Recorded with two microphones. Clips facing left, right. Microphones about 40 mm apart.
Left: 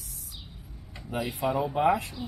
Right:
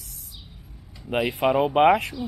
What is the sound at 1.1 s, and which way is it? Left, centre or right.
Speech, right.